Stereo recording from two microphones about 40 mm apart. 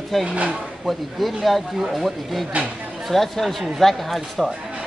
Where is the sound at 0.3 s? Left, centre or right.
Right.